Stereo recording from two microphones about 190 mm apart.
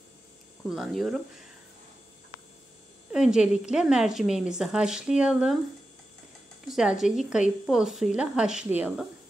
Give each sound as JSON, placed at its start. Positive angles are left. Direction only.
{"t": 0.7, "sound": "speech", "side_deg": 0}
{"t": 3.1, "sound": "a woman's voice", "side_deg": -5}
{"t": 6.7, "sound": "speech", "side_deg": 0}